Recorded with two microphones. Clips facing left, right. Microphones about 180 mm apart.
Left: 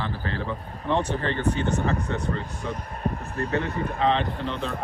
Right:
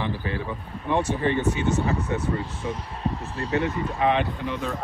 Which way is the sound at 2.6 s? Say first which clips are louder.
Right 1 dB; 60° left (ahead or behind).